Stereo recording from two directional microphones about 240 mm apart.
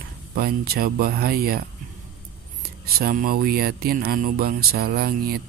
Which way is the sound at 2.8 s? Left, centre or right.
Right.